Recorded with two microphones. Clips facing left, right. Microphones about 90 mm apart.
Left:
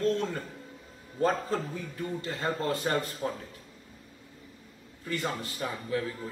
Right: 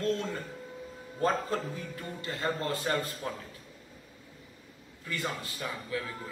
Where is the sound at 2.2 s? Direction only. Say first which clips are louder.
Right 1 dB; 35° left (ahead or behind).